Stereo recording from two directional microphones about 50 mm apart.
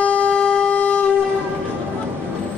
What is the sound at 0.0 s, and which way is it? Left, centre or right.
Wind instrument, left.